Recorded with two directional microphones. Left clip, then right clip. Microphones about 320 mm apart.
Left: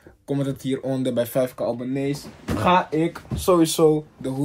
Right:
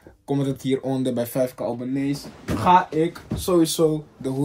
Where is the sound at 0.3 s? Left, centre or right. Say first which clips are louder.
Right 2 dB; centre.